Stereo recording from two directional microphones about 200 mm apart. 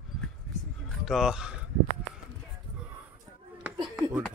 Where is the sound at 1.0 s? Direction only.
Centre (ahead or behind).